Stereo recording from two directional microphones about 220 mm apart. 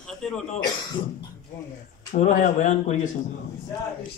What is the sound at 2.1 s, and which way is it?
Speech, 35° left (ahead or behind).